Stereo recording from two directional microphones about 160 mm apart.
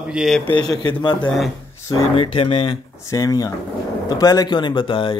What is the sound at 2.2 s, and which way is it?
Speech, 35° left (ahead or behind).